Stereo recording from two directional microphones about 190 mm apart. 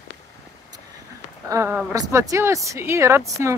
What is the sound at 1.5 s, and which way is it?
A woman's voice, 10° right (ahead or behind).